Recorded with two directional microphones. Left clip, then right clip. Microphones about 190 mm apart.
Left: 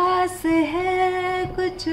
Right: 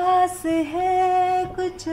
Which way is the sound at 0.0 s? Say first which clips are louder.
Right 1 dB; centre (ahead or behind).